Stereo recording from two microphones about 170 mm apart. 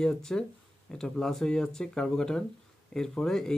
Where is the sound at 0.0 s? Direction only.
5° left (ahead or behind).